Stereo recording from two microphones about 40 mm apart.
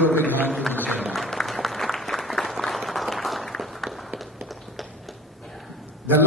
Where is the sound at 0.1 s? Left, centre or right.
Left.